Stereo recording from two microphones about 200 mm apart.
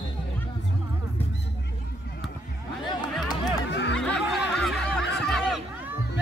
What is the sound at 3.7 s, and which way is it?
Music, 60° left (ahead or behind).